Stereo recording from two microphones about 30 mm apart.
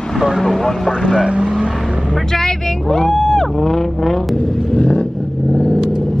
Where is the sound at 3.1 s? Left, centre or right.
Centre.